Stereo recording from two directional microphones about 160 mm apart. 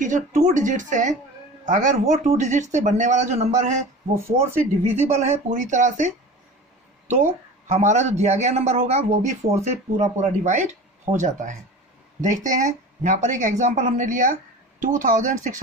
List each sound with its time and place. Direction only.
0.0 s speech: 50° right (ahead or behind)
4.3 s speech: 15° right (ahead or behind)
4.8 s speech: 45° right (ahead or behind)
7.6 s speech: 50° right (ahead or behind)